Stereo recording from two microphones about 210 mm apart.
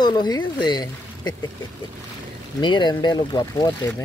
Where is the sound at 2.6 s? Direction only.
20° left (ahead or behind).